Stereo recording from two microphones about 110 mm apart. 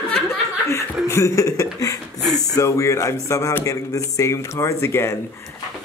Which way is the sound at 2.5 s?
30° left (ahead or behind).